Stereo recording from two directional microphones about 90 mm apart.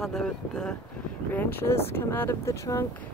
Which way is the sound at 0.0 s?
5° left (ahead or behind).